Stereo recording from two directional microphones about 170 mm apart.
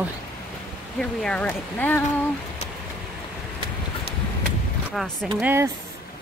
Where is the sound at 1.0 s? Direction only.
5° left (ahead or behind).